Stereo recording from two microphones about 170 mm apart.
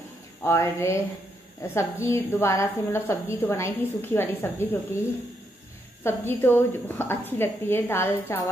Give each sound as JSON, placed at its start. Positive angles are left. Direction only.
{"t": 0.4, "sound": "a woman's voice", "side_deg": 15}
{"t": 6.0, "sound": "a woman's voice", "side_deg": 15}